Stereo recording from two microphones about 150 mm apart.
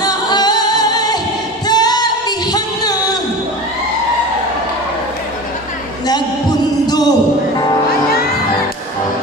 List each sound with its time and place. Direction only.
0.0 s music: 25° left (ahead or behind)
1.7 s singing: 25° left (ahead or behind)
6.9 s a sound: 25° left (ahead or behind)